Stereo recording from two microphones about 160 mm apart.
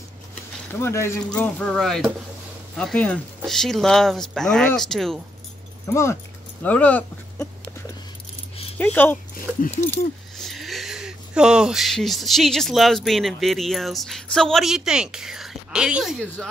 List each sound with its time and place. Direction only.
0.7 s speech: 15° left (ahead or behind)
6.6 s speech: 10° left (ahead or behind)
8.7 s speech: 10° left (ahead or behind)
9.6 s speech: 50° left (ahead or behind)
9.8 s speech: 5° left (ahead or behind)